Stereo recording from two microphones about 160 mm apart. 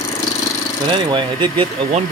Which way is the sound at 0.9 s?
30° right (ahead or behind).